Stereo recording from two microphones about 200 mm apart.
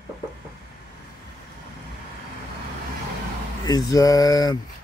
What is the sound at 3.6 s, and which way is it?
Speech, 20° left (ahead or behind).